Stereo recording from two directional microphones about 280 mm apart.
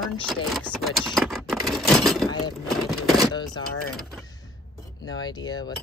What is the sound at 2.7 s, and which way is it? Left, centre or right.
Speech, centre.